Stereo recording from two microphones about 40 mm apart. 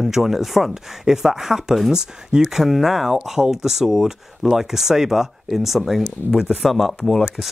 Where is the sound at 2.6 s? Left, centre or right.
Centre.